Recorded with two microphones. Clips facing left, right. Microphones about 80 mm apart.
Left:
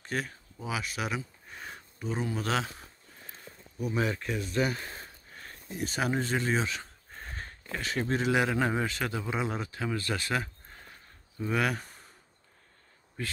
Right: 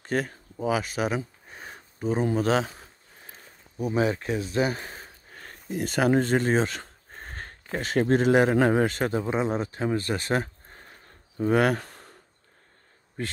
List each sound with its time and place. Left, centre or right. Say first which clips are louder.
0.0 s speech: right 6 dB; right
0.9 s a sound: right 7 dB; right
2.0 s speech: right 8 dB; right
3.7 s speech: right 6 dB; centre
5.4 s speech: right 6 dB; right
11.3 s speech: right 8 dB; right
11.8 s a sound: right 5 dB; right